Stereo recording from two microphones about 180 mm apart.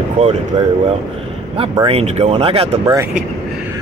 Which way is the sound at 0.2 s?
40° right (ahead or behind).